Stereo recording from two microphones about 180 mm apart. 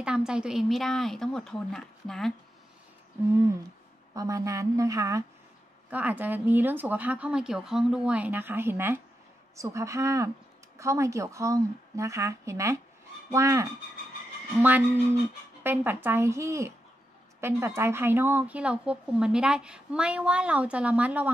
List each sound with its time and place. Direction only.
0.0 s speech: 5° right (ahead or behind)
4.1 s a woman's voice: 20° right (ahead or behind)
15.6 s speech: 10° right (ahead or behind)